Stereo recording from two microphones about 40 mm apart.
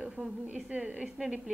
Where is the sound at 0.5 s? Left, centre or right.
Right.